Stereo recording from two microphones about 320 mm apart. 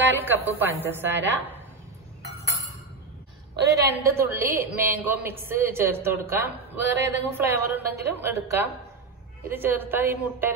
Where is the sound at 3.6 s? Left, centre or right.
Centre.